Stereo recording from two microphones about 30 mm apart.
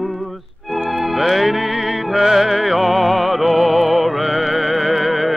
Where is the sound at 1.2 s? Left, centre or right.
Centre.